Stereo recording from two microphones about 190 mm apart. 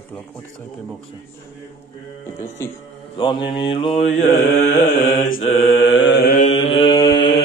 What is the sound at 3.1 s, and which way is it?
Mantra, 25° left (ahead or behind).